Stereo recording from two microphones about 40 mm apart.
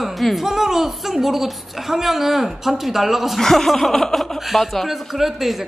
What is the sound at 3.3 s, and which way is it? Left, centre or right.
Speech, centre.